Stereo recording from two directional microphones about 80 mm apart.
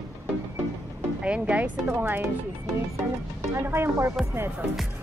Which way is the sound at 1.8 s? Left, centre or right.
Right.